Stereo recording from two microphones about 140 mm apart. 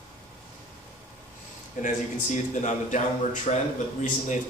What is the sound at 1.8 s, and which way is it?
Speech, 60° left (ahead or behind).